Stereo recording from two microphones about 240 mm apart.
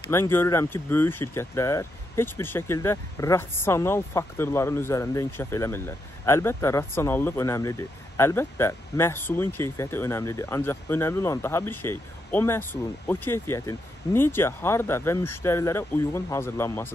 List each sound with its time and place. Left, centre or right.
0.0 s speech: centre